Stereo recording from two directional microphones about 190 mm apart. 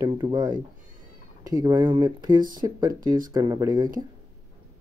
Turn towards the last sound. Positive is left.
turn(degrees=-20)  # may be behind; listen again after turning